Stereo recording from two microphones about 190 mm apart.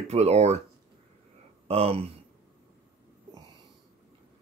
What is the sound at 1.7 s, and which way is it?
Speech, 30° right (ahead or behind).